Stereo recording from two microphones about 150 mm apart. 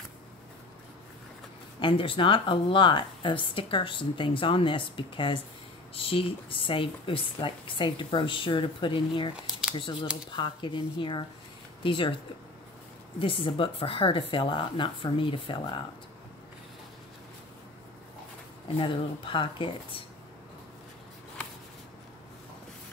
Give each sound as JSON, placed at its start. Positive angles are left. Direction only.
{"t": 1.8, "sound": "speech", "side_deg": 35}
{"t": 9.3, "sound": "a sound", "side_deg": -5}
{"t": 10.3, "sound": "speech", "side_deg": 30}
{"t": 13.2, "sound": "speech", "side_deg": 35}
{"t": 18.8, "sound": "speech", "side_deg": 35}